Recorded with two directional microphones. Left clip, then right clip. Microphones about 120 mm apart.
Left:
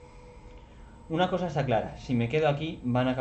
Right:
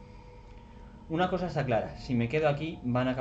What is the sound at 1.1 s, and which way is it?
Speech, 35° right (ahead or behind).